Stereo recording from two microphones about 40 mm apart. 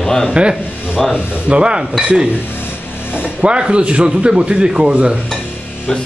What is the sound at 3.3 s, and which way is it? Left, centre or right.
Speech, right.